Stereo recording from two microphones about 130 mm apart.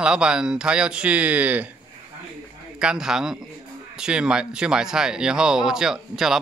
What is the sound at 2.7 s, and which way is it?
Speech, 5° right (ahead or behind).